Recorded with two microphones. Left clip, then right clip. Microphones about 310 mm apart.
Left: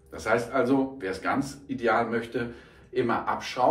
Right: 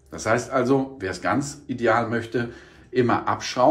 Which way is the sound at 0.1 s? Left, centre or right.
Centre.